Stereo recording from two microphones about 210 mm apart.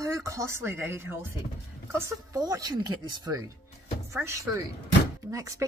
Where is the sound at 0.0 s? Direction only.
15° right (ahead or behind).